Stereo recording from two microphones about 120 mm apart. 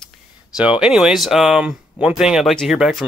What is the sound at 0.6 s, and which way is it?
Speech, 5° right (ahead or behind).